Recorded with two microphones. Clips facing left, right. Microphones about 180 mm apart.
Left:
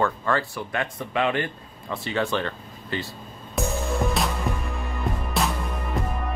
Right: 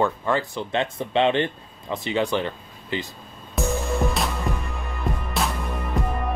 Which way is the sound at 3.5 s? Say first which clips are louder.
Right 1 dB; centre (ahead or behind).